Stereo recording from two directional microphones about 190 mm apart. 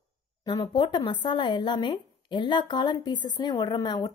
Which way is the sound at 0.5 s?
25° left (ahead or behind).